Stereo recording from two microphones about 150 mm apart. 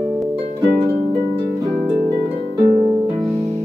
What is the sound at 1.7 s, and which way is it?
Harp, centre (ahead or behind).